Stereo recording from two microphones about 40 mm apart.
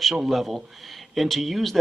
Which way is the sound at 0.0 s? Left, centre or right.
Centre.